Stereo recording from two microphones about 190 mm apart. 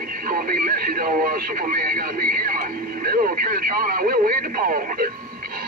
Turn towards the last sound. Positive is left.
turn(degrees=-45)  # may be behind; listen again after turning